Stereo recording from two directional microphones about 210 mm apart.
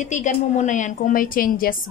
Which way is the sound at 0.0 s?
35° left (ahead or behind).